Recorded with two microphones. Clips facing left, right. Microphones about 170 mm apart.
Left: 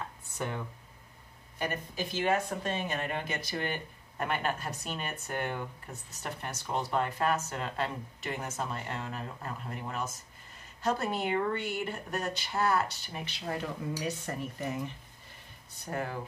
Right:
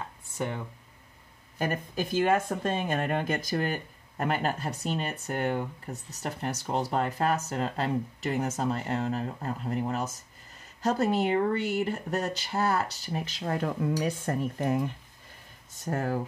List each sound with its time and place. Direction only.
1.6 s speech: 45° right (ahead or behind)
15.7 s speech: 45° right (ahead or behind)